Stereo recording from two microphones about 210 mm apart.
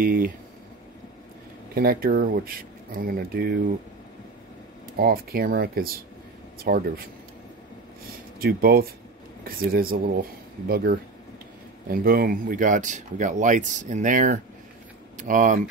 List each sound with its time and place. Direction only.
0.0 s speech: 40° right (ahead or behind)
1.8 s speech: 45° right (ahead or behind)
4.9 s speech: 45° right (ahead or behind)
8.4 s speech: 45° right (ahead or behind)